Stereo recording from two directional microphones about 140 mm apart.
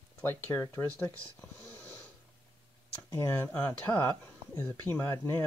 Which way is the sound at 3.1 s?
15° left (ahead or behind).